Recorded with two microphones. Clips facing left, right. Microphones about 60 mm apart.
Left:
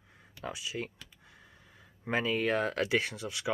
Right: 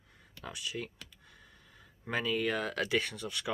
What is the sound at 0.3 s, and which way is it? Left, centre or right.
Speech, centre.